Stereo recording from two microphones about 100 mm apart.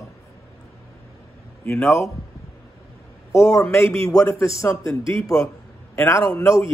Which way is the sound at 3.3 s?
30° left (ahead or behind).